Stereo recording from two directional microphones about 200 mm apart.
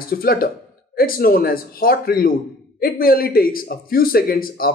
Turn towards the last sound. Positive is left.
turn(degrees=45)  # may be behind; listen again after turning